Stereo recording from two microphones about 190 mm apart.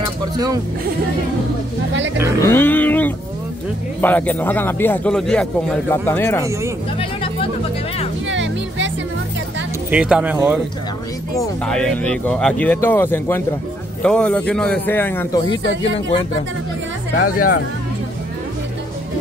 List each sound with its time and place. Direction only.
2.4 s a sound: 10° left (ahead or behind)
4.0 s a man's voice: 10° left (ahead or behind)
8.3 s music: 75° right (ahead or behind)
9.8 s speech: 5° right (ahead or behind)
11.6 s a man's voice: 5° left (ahead or behind)
17.2 s speech: 50° left (ahead or behind)